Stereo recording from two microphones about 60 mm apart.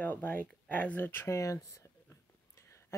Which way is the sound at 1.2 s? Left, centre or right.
Left.